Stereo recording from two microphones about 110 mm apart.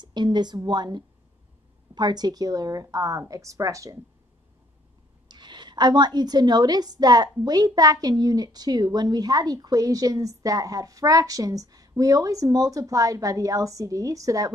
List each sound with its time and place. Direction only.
0.0 s a woman's voice: 40° right (ahead or behind)
5.3 s a woman's voice: 45° right (ahead or behind)